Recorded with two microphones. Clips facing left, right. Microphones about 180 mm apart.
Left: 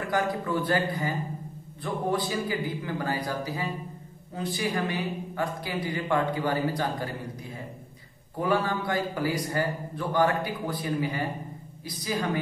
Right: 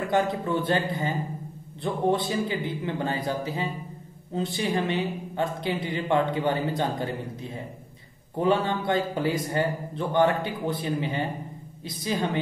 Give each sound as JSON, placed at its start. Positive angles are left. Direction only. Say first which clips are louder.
{"t": 0.1, "sound": "a woman's voice", "louder": "right 2 dB", "side_deg": -25}